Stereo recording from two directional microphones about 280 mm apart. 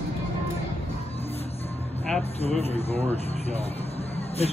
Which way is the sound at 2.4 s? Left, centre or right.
Left.